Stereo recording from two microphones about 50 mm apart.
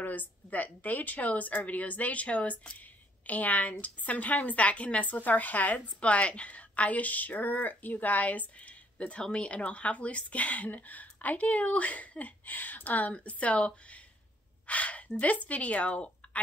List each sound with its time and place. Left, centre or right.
0.0 s a woman's voice: left